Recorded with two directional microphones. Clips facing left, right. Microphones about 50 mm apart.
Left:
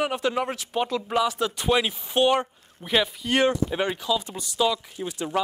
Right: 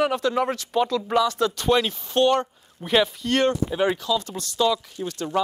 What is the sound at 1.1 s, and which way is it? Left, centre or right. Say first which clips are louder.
A man's voice: right 3 dB; centre.